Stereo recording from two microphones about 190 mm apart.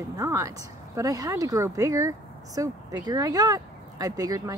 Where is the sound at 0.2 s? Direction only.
15° right (ahead or behind).